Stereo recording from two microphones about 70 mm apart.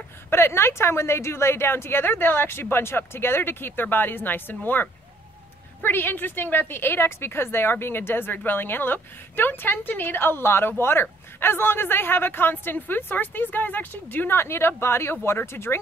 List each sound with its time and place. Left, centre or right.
0.3 s a woman's voice: left